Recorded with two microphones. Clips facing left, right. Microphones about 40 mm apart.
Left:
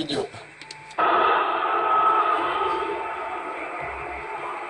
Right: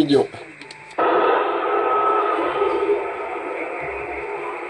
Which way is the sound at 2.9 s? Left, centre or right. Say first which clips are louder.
Right 6 dB; centre.